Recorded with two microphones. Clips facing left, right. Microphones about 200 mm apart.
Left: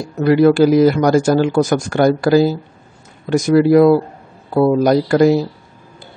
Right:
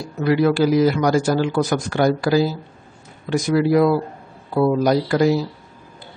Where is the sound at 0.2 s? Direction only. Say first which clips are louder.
Left 6 dB; 50° left (ahead or behind).